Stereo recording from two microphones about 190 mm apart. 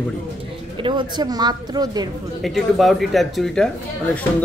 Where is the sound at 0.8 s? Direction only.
20° right (ahead or behind).